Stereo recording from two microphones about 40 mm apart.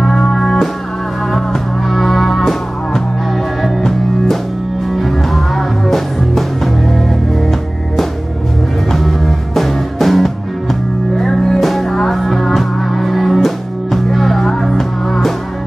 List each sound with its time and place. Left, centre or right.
0.0 s music: centre
8.9 s music: centre